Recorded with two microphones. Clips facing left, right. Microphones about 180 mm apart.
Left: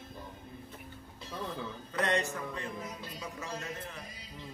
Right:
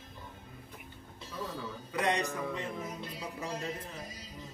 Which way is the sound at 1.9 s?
15° right (ahead or behind).